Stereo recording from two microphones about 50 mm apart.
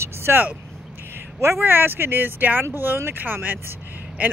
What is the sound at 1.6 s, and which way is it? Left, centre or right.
Speech, right.